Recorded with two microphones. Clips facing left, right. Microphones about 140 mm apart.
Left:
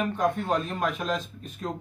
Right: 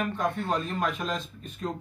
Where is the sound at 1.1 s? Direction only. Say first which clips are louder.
Left 3 dB; 35° left (ahead or behind).